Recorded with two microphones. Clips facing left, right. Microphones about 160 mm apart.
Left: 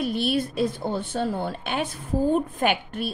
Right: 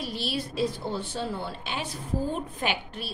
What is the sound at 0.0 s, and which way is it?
A woman's voice, 55° left (ahead or behind).